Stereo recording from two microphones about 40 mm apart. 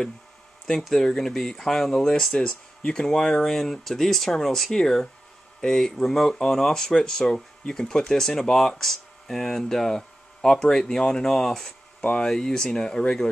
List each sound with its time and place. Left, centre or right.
0.7 s speech: centre